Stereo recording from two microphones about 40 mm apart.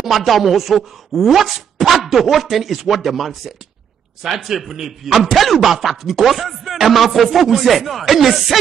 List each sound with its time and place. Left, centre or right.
0.0 s a man's voice: centre